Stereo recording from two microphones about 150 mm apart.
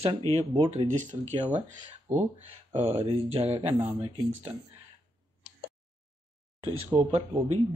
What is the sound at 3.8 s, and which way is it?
Speech, 15° right (ahead or behind).